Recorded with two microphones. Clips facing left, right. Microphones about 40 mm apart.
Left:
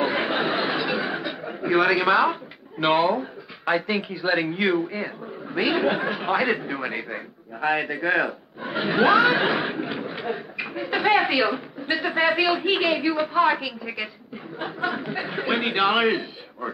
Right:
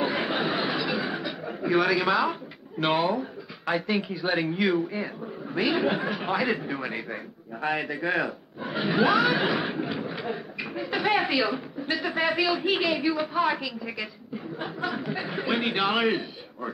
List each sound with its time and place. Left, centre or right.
0.0 s chuckle: centre
2.8 s a man's voice: centre